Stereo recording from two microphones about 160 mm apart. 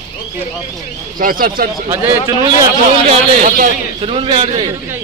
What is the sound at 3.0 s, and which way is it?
A man's voice, 45° right (ahead or behind).